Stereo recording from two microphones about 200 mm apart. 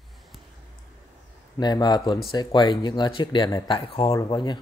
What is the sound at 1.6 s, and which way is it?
Speech, 20° left (ahead or behind).